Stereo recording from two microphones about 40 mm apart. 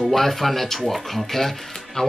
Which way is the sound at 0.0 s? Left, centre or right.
Centre.